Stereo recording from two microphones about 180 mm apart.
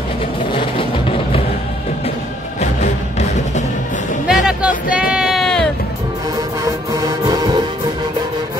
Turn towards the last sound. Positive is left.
turn(degrees=-20)  # may be behind; listen again after turning